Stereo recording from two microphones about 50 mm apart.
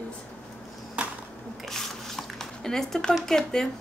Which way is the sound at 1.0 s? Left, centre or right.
Right.